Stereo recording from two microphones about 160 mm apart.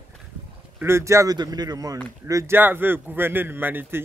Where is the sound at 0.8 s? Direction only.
15° right (ahead or behind).